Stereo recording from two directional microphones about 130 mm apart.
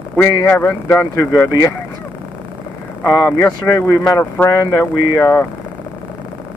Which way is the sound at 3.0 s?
20° left (ahead or behind).